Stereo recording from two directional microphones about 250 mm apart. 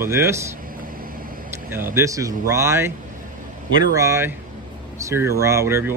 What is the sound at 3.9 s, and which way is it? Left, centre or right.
Speech, centre.